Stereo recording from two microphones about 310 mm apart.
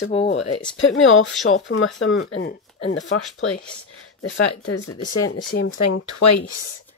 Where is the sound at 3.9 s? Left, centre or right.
Left.